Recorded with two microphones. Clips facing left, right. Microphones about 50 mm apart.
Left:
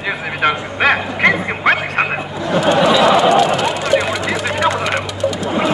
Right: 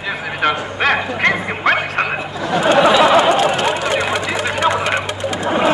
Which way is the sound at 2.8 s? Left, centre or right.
Right.